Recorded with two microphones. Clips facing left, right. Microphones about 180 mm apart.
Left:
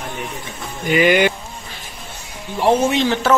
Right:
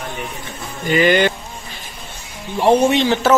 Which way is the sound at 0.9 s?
10° left (ahead or behind).